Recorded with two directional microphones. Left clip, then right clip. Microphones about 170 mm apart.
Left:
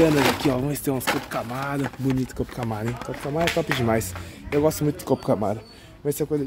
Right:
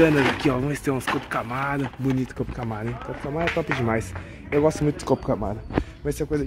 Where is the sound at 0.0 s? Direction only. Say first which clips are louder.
Even; 20° left (ahead or behind).